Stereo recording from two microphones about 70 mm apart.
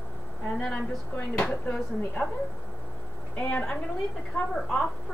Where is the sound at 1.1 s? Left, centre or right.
Centre.